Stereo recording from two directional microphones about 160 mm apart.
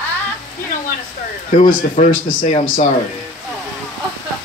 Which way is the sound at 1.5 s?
55° left (ahead or behind).